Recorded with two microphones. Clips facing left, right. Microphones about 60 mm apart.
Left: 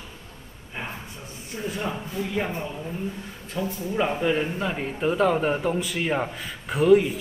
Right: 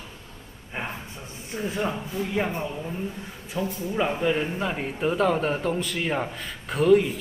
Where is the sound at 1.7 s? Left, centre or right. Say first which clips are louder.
Right 2 dB; centre.